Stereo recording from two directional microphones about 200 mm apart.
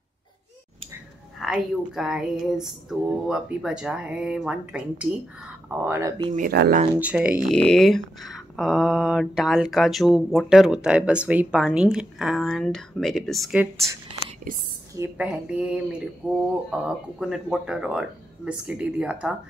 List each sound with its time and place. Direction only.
1.4 s speech: 5° right (ahead or behind); by 6.3 s 20° right (ahead or behind)
6.3 s speech: 50° right (ahead or behind)
7.0 s speech: 5° right (ahead or behind)
15.0 s speech: 5° right (ahead or behind)